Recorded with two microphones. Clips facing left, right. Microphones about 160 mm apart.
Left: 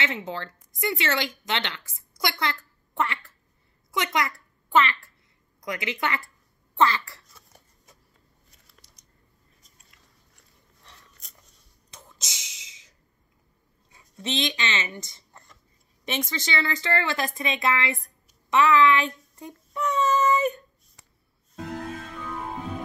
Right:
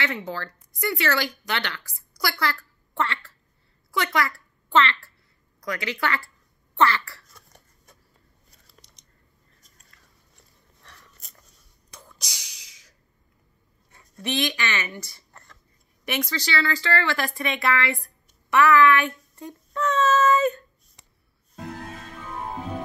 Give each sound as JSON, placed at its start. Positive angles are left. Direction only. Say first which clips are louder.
{"t": 0.0, "sound": "a child's voice", "louder": "right 1 dB", "side_deg": 20}
{"t": 11.9, "sound": "a sound", "louder": "even", "side_deg": 20}
{"t": 13.9, "sound": "speech", "louder": "right 2 dB", "side_deg": 20}